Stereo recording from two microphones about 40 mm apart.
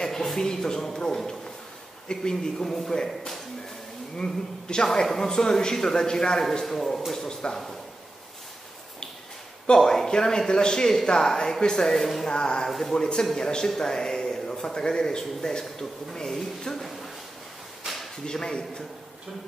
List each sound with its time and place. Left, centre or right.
0.0 s a sound: centre
0.4 s a man's voice: centre
4.2 s a man's voice: centre
5.0 s a man's voice: centre
7.2 s a man's voice: centre
9.8 s a man's voice: centre
12.3 s a man's voice: left
18.2 s a man's voice: centre